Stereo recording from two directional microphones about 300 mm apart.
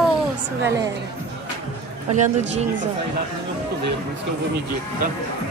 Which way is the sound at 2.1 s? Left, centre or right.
Right.